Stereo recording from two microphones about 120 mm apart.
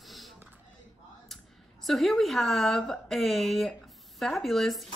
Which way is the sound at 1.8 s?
Centre (ahead or behind).